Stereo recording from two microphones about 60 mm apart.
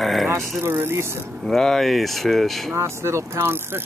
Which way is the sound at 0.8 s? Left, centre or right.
Right.